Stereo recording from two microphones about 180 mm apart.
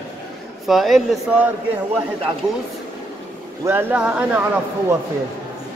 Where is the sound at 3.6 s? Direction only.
10° right (ahead or behind).